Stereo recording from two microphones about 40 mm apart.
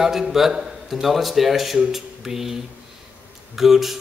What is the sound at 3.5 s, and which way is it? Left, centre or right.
Speech, centre.